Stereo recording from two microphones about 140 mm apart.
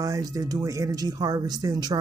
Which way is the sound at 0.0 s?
25° right (ahead or behind).